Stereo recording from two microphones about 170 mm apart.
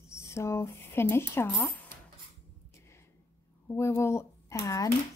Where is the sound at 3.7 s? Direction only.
15° left (ahead or behind).